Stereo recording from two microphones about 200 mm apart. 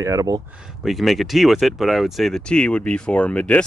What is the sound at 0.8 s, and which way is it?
Speech, centre (ahead or behind).